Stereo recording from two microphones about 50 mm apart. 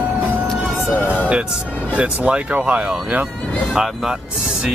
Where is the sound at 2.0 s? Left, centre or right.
Right.